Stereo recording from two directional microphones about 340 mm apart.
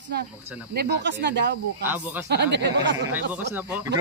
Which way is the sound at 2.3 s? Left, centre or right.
Right.